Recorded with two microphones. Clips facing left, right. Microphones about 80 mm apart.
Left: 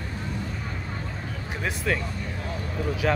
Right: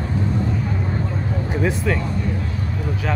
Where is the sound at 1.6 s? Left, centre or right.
Centre.